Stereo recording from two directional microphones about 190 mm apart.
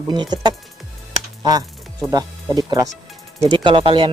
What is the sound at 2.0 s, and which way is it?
Speech, 20° right (ahead or behind).